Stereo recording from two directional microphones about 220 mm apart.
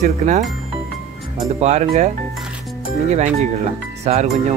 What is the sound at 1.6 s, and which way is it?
Speech, 30° right (ahead or behind).